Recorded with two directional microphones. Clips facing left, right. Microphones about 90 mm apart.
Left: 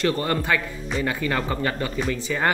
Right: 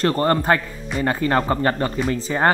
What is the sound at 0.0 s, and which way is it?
Speech, 40° right (ahead or behind).